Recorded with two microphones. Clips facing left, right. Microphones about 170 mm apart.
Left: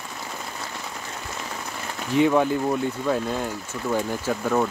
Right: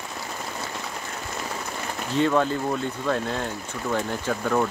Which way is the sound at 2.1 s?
15° left (ahead or behind).